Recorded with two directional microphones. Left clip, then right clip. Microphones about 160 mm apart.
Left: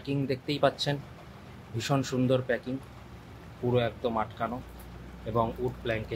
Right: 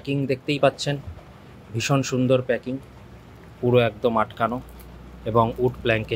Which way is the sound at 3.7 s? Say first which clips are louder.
Right 9 dB; 35° right (ahead or behind).